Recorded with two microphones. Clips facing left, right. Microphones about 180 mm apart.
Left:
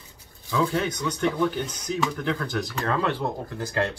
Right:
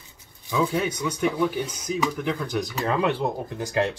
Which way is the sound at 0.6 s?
5° right (ahead or behind).